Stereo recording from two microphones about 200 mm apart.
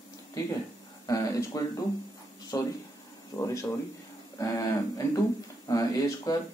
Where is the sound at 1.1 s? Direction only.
15° left (ahead or behind).